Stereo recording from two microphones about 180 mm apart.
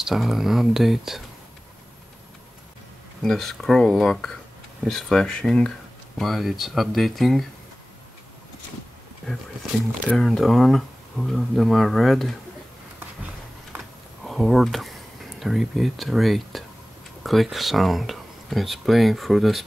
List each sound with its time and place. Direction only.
0.0 s speech: centre (ahead or behind)
3.2 s speech: centre (ahead or behind)
10.0 s speech: centre (ahead or behind)
13.7 s a sound: centre (ahead or behind)
17.2 s speech: centre (ahead or behind)